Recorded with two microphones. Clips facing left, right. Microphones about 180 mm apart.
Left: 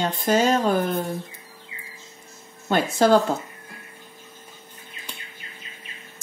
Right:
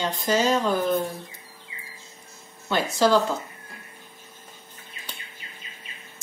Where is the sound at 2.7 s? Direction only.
50° left (ahead or behind).